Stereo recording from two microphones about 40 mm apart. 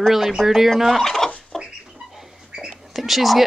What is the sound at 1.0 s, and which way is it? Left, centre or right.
Fowl, centre.